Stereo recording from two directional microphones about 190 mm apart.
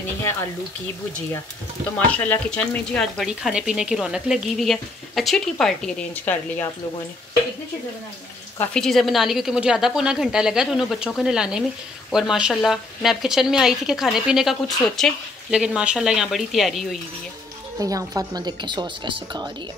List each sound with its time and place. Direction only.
2.1 s speech: 10° left (ahead or behind)
8.5 s speech: 5° left (ahead or behind)
17.7 s speech: 20° right (ahead or behind)